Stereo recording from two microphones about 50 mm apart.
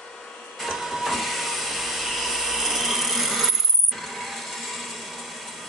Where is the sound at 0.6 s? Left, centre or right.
Centre.